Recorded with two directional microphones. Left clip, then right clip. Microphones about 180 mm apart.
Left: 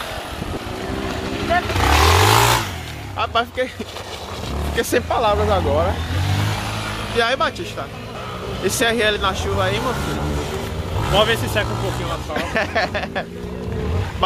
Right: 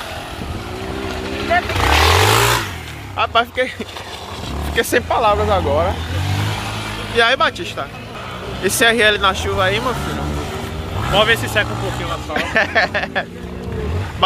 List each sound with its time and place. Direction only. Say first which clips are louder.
1.5 s vehicle: right 2 dB; 35° left (ahead or behind); by 2.6 s 55° left (ahead or behind)
3.2 s speech: right 4 dB; 5° right (ahead or behind)
4.7 s speech: right 3 dB; centre (ahead or behind)
7.2 s speech: right 5 dB; 10° right (ahead or behind)
8.6 s speech: right 5 dB; 15° right (ahead or behind)
11.1 s speech: right 3 dB; 20° left (ahead or behind)
12.4 s speech: right 5 dB; 5° right (ahead or behind)